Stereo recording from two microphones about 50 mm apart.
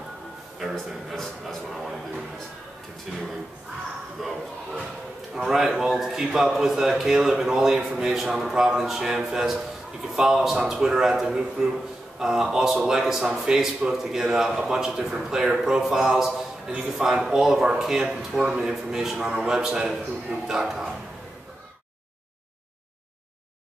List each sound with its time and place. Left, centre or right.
0.7 s speech: centre
3.1 s a man's voice: centre